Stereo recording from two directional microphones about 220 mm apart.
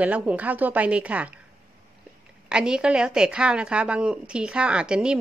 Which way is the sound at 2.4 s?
5° right (ahead or behind).